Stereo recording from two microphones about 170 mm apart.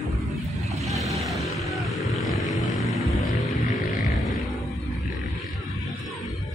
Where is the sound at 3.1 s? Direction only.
Centre (ahead or behind).